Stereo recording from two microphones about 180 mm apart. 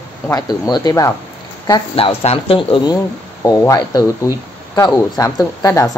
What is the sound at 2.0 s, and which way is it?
Speech, 30° left (ahead or behind).